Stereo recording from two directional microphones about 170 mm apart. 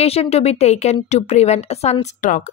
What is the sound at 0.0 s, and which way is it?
A woman's voice, 35° left (ahead or behind).